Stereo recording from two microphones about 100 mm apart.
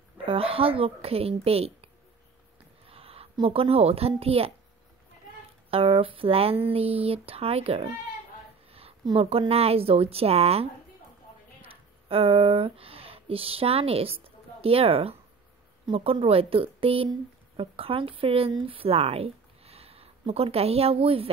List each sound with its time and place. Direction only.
0.2 s a woman's voice: 70° right (ahead or behind)
2.9 s a sound: 75° right (ahead or behind)
3.4 s speech: 75° right (ahead or behind)
5.7 s speech: 70° right (ahead or behind)
9.1 s speech: 70° right (ahead or behind)
9.5 s speech: 80° right
11.6 s speech: 70° right (ahead or behind)
14.2 s a sound: 75° right (ahead or behind)
15.9 s speech: 65° right (ahead or behind)